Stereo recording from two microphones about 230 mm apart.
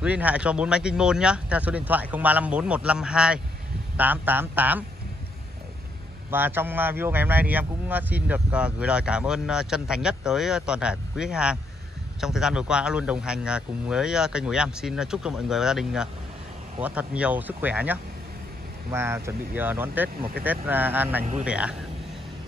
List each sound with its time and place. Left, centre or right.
0.0 s speech: centre
6.3 s speech: centre